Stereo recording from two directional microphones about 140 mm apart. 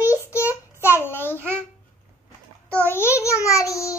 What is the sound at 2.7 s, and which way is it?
A child's voice, 10° left (ahead or behind).